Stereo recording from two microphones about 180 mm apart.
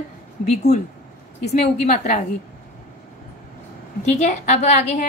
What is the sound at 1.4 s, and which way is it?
Speech, 35° left (ahead or behind).